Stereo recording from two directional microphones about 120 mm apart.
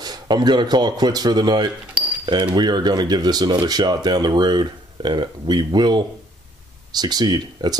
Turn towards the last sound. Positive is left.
turn(degrees=-35)  # may be behind; listen again after turning